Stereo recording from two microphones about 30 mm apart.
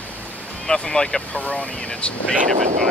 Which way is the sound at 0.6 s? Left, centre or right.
Centre.